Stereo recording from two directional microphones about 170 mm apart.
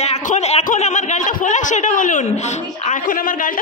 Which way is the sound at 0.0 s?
45° left (ahead or behind).